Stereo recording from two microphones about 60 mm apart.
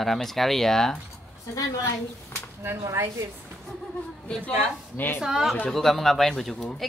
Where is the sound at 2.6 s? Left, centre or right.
Right.